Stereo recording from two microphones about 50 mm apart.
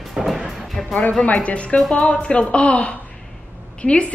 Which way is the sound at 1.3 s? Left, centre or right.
Left.